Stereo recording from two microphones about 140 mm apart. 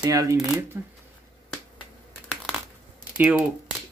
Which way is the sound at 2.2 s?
5° left (ahead or behind).